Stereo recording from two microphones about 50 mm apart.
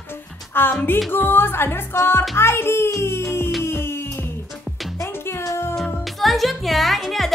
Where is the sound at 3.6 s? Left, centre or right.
Left.